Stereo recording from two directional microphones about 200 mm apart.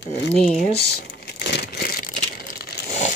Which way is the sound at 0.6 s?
55° left (ahead or behind).